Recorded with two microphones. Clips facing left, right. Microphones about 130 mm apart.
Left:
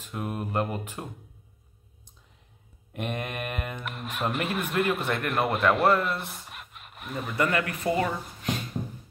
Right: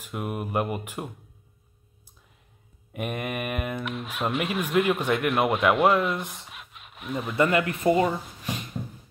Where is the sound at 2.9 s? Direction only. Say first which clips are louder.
Right 2 dB; 10° right (ahead or behind).